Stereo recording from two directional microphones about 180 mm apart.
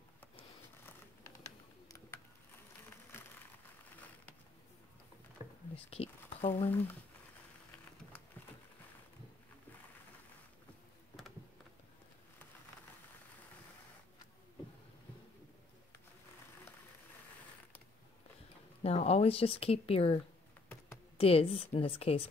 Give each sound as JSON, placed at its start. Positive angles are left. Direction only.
{"t": 5.4, "sound": "a sound", "side_deg": 35}
{"t": 18.8, "sound": "speech", "side_deg": 35}
{"t": 21.2, "sound": "a woman's voice", "side_deg": 30}